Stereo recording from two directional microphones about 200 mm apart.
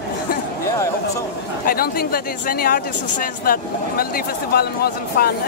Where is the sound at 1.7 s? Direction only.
50° left (ahead or behind).